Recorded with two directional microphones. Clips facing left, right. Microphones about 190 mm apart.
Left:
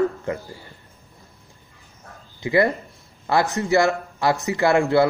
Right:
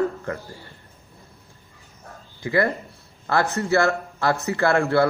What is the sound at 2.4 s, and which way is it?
Speech, 15° left (ahead or behind).